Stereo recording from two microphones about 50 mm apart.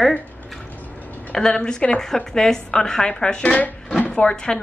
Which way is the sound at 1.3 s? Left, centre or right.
Centre.